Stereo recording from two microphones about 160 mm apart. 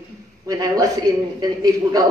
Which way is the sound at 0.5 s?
25° right (ahead or behind).